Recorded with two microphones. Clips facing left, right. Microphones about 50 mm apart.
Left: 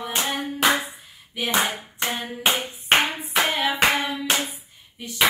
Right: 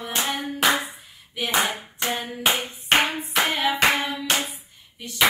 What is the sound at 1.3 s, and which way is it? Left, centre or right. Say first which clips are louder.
Hands: even; centre.